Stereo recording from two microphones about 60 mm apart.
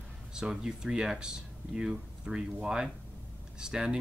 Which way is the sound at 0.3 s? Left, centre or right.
Centre.